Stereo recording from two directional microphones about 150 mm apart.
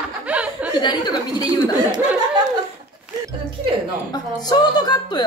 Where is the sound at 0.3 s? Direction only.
10° right (ahead or behind).